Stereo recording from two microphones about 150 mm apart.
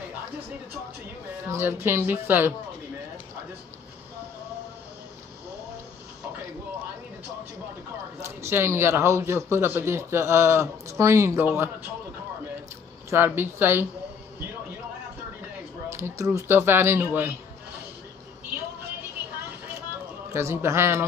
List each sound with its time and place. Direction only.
1.5 s speech: 15° right (ahead or behind)
8.2 s speech: 15° right (ahead or behind)
13.1 s speech: 15° right (ahead or behind)
15.9 s speech: 15° right (ahead or behind)
20.3 s speech: 15° right (ahead or behind)